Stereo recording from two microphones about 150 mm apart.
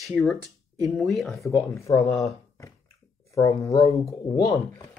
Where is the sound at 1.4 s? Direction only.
20° left (ahead or behind).